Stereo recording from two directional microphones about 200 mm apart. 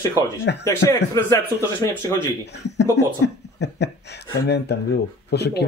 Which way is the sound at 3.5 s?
60° left (ahead or behind).